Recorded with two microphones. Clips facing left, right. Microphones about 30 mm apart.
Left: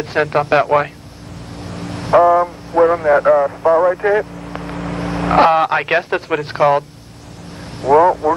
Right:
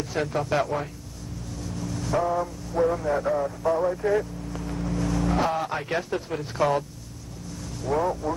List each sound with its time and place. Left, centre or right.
0.0 s speech: left
1.6 s vehicle: left
3.7 s speech: left
4.1 s vehicle: left
5.0 s vehicle: left
5.3 s speech: left
6.5 s speech: left
7.8 s speech: left